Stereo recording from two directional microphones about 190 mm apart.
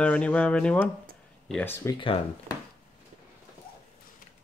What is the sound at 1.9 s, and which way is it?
Speech, 25° left (ahead or behind).